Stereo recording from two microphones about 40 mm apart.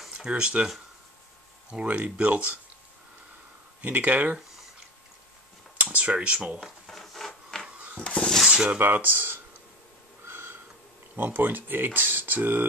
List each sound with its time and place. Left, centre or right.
0.1 s speech: right
1.9 s speech: right
3.8 s speech: right
5.9 s speech: right
6.9 s wood: centre
8.0 s a sound: left
8.7 s speech: right
10.2 s snort: right
11.1 s speech: right